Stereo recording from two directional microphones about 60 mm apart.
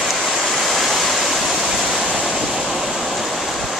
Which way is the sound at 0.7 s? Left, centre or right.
Centre.